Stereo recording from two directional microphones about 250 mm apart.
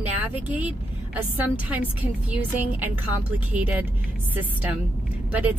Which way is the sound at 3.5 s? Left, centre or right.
Centre.